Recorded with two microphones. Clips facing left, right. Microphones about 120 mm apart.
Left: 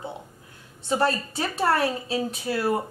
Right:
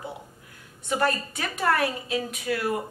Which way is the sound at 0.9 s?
30° left (ahead or behind).